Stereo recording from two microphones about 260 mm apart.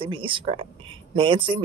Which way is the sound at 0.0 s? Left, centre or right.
Centre.